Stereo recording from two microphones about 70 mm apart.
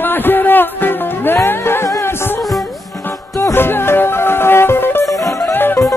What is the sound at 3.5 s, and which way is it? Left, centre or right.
Music, left.